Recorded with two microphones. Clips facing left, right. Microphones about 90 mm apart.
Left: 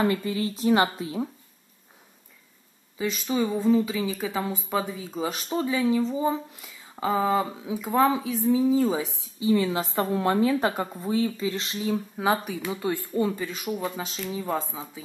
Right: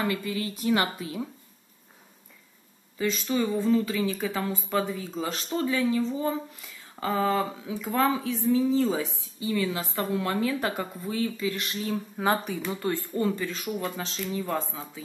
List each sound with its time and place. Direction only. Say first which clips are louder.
0.0 s a woman's voice: left 4 dB; 30° left (ahead or behind)
3.0 s a woman's voice: left 1 dB; 15° left (ahead or behind)
12.2 s speech: right 1 dB; 5° left (ahead or behind)
12.8 s speech: left 2 dB; 15° left (ahead or behind)